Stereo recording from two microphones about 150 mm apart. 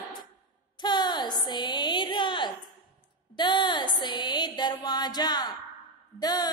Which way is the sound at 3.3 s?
30° left (ahead or behind).